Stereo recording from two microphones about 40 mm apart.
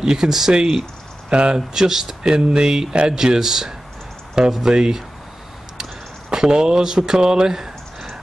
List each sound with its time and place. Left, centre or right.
0.0 s speech: centre
1.7 s speech: centre
6.3 s speech: centre